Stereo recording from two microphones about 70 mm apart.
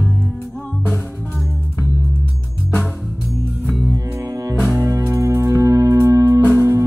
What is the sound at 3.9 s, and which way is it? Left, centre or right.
Music, right.